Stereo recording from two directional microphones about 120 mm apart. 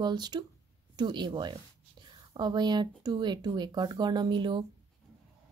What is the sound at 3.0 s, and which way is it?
Speech, 35° right (ahead or behind).